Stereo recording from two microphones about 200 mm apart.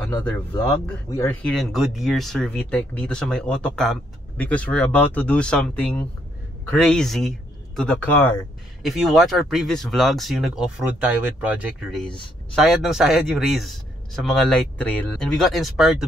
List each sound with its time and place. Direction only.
1.1 s speech: 10° left (ahead or behind)
8.8 s speech: centre (ahead or behind)